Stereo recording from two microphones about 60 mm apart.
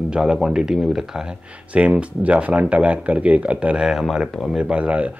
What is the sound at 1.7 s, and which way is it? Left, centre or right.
Speech, right.